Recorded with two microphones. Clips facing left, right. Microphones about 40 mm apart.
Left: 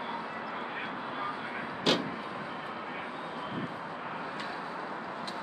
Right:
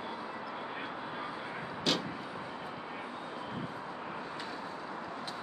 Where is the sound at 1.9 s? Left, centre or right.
Centre.